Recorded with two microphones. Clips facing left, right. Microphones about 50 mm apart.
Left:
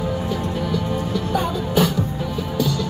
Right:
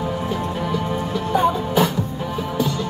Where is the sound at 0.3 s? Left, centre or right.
Right.